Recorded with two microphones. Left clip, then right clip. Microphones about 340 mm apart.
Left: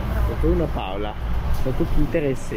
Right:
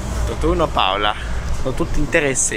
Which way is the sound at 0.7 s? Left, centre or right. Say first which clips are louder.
Right 11 dB; right.